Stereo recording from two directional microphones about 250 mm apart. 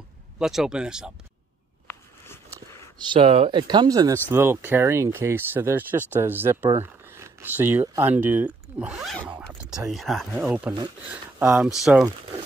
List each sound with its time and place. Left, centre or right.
0.4 s speech: centre
1.9 s a sound: centre
2.5 s speech: centre